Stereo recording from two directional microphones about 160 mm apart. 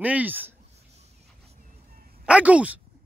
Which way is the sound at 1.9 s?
70° right (ahead or behind).